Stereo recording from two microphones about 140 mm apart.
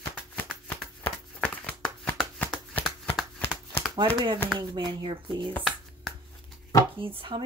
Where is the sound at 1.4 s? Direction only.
10° left (ahead or behind).